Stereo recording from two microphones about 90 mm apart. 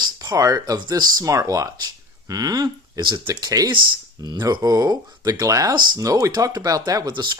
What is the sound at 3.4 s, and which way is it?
Speech, 45° right (ahead or behind).